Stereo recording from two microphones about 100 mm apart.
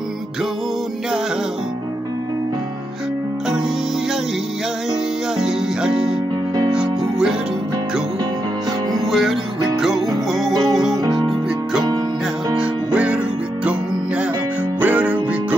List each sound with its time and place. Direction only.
5.4 s music: 5° right (ahead or behind)
9.1 s music: 5° right (ahead or behind)
10.5 s music: 45° right (ahead or behind)
12.5 s music: 10° right (ahead or behind)
14.8 s music: 15° right (ahead or behind)